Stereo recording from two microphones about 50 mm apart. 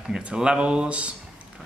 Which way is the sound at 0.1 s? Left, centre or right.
Centre.